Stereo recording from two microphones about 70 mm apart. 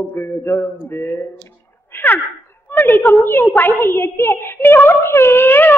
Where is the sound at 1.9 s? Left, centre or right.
Left.